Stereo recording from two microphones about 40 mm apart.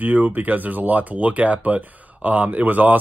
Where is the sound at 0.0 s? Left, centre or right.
Right.